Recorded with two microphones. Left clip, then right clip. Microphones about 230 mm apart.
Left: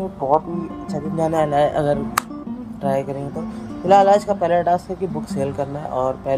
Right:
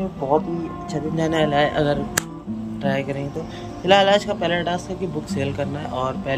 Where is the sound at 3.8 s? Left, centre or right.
Centre.